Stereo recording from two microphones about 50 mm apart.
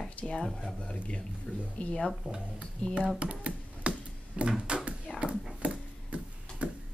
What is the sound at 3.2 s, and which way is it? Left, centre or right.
Computer keyboard, right.